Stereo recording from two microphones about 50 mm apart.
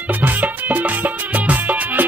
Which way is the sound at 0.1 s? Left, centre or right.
Right.